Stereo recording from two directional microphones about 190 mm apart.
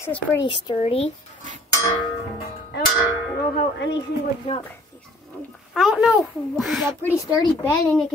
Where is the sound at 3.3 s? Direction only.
65° left (ahead or behind).